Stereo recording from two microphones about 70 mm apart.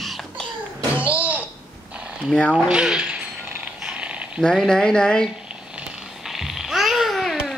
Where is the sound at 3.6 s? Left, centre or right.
Centre.